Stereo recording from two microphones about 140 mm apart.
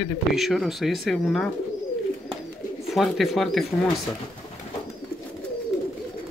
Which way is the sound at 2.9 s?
Centre (ahead or behind).